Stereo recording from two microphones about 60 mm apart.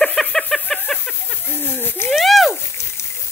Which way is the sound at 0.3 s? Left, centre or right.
Left.